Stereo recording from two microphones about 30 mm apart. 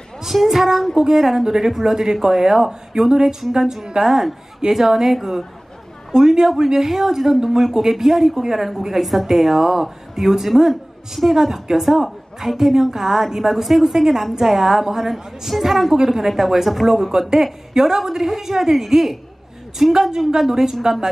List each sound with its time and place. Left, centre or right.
0.2 s a woman's voice: centre
4.0 s a woman's voice: centre
16.8 s a woman's voice: centre